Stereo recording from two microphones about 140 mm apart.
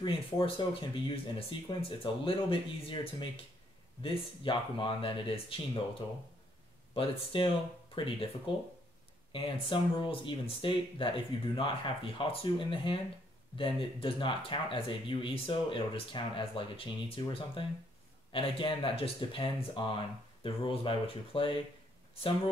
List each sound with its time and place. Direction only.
0.0 s speech: 40° left (ahead or behind)
6.9 s speech: 40° left (ahead or behind)
9.3 s speech: 35° left (ahead or behind)